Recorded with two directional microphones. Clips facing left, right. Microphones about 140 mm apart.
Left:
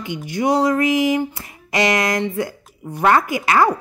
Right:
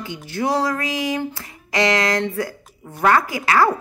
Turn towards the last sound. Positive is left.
turn(degrees=20)  # may be behind; listen again after turning